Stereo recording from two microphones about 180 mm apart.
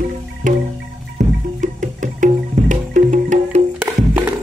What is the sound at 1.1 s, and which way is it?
Music, 45° right (ahead or behind).